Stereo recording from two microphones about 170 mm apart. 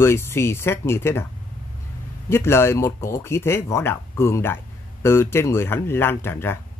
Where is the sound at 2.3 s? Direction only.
15° left (ahead or behind).